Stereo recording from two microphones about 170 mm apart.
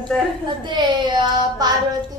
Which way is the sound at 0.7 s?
25° right (ahead or behind).